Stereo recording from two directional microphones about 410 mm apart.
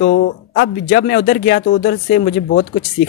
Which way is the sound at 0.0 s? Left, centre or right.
Left.